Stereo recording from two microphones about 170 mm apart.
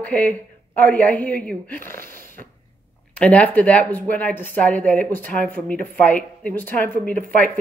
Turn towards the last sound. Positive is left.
turn(degrees=10)  # may be behind; listen again after turning